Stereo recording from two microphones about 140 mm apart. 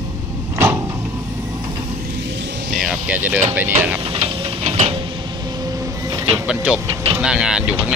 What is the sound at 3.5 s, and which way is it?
Speech, 15° right (ahead or behind).